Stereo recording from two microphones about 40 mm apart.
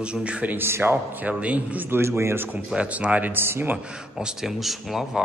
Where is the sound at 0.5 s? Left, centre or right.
Right.